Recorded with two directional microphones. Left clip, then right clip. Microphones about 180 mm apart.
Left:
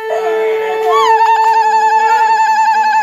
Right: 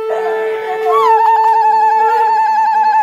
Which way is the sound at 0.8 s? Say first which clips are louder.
Even; 15° right (ahead or behind).